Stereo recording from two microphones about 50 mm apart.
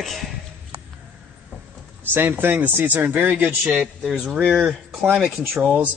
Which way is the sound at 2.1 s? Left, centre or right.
Right.